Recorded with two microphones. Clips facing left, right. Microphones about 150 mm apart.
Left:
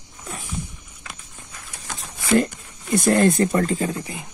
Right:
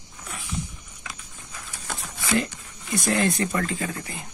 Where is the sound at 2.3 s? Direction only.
50° left (ahead or behind).